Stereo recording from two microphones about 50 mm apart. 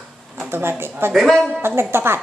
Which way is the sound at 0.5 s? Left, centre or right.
Right.